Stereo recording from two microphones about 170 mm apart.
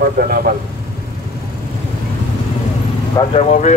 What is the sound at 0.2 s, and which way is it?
Speech, 65° right (ahead or behind).